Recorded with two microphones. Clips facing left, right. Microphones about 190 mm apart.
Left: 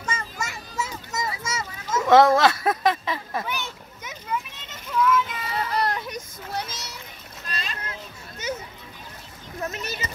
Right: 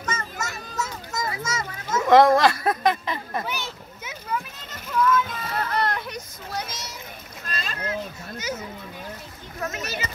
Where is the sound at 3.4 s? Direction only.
10° right (ahead or behind).